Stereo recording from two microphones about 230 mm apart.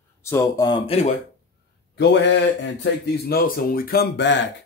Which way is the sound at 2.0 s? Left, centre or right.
Left.